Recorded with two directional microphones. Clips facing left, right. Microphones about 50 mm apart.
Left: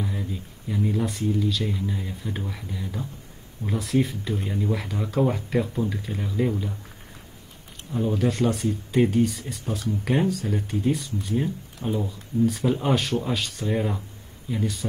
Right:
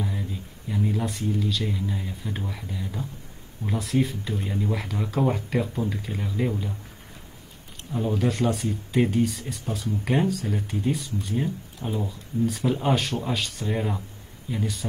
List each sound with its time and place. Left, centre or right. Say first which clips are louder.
0.0 s speech: left 1 dB; centre
7.9 s speech: left 1 dB; centre